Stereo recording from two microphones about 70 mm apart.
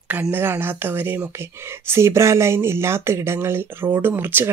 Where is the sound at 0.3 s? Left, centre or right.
Right.